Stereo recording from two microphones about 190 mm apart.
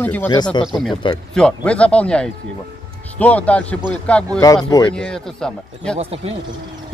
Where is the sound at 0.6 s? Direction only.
Centre (ahead or behind).